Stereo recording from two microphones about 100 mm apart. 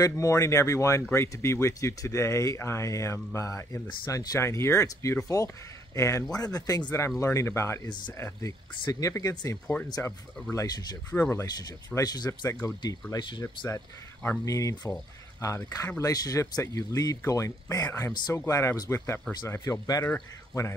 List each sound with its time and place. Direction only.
0.0 s speech: 35° left (ahead or behind)
11.1 s speech: 25° left (ahead or behind)
11.9 s speech: 40° left (ahead or behind)
13.7 s speech: 30° left (ahead or behind)